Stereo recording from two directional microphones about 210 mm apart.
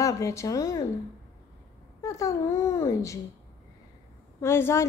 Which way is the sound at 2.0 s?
15° left (ahead or behind).